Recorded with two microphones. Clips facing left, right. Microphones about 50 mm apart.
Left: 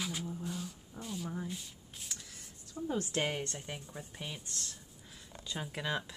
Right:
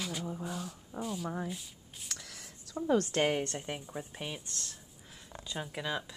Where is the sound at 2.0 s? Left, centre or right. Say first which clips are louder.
Right 5 dB; right.